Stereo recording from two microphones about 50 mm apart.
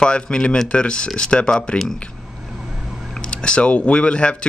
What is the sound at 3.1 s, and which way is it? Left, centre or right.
Speech, centre.